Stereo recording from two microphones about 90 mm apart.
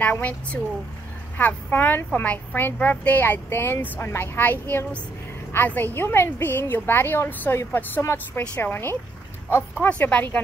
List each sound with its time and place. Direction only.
0.0 s a woman's voice: 20° left (ahead or behind)
9.8 s speech: 15° left (ahead or behind)